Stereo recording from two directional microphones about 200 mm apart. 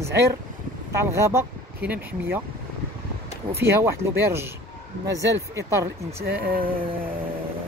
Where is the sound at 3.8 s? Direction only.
15° right (ahead or behind).